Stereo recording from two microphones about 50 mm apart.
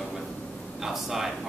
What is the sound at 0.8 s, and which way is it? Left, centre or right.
Speech, centre.